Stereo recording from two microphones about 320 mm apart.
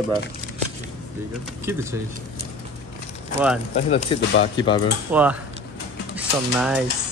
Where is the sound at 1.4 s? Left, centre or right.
Centre.